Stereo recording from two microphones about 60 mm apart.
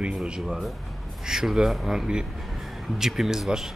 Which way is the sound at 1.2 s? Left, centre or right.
Centre.